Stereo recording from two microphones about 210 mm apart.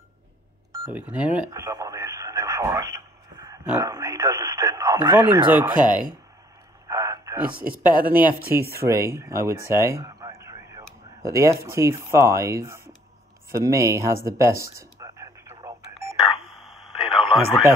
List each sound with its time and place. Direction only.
0.8 s speech: 5° right (ahead or behind)
1.5 s radio: 15° right (ahead or behind)
5.8 s speech: 40° right (ahead or behind)
6.9 s a sound: 15° right (ahead or behind)
7.5 s speech: 45° right (ahead or behind)
8.8 s speech: 15° right (ahead or behind)
13.7 s a sound: 15° right (ahead or behind)
16.3 s radio: centre (ahead or behind)